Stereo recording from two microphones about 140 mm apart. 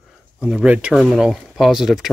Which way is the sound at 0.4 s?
5° right (ahead or behind).